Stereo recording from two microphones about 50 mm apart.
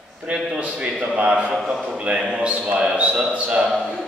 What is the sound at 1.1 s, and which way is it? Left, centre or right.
Speech, right.